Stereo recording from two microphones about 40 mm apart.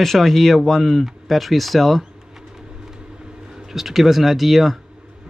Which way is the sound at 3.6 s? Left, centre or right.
Centre.